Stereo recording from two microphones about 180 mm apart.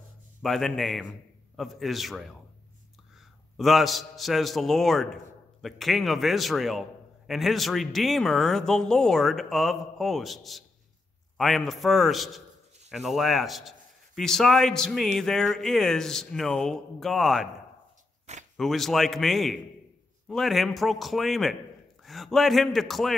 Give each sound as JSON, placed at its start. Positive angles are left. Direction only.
{"t": 0.4, "sound": "a man's voice", "side_deg": 0}
{"t": 3.5, "sound": "a man's voice", "side_deg": 0}
{"t": 18.3, "sound": "a sound", "side_deg": -40}
{"t": 18.6, "sound": "a man's voice", "side_deg": 0}